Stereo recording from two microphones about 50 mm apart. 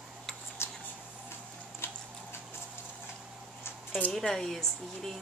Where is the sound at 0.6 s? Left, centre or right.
Left.